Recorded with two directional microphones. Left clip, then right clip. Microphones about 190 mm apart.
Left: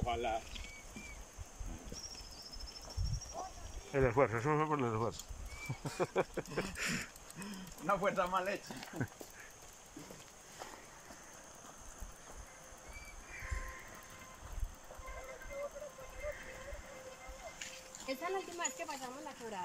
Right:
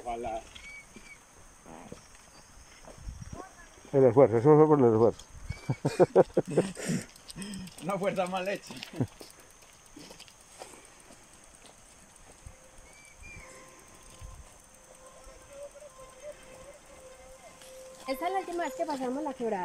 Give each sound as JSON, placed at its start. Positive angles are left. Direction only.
{"t": 0.0, "sound": "a sound", "side_deg": -15}
{"t": 3.9, "sound": "speech", "side_deg": -30}
{"t": 6.1, "sound": "speech", "side_deg": -35}
{"t": 7.8, "sound": "speech", "side_deg": -20}
{"t": 18.0, "sound": "speech", "side_deg": -25}